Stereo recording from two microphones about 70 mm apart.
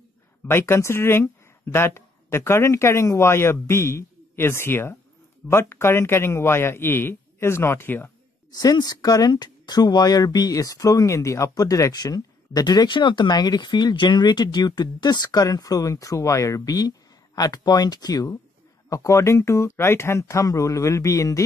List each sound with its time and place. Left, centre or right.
0.5 s a man's voice: left
8.5 s speech: left
11.9 s speech: left
18.9 s speech: left